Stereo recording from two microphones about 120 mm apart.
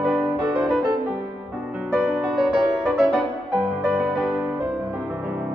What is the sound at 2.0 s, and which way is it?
Music, 5° right (ahead or behind).